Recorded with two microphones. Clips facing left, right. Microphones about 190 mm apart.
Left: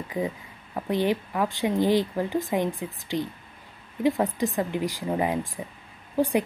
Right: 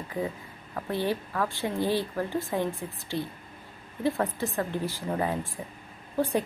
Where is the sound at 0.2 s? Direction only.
20° left (ahead or behind).